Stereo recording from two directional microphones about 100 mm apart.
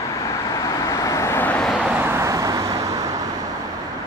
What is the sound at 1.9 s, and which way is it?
Vehicle, 20° right (ahead or behind).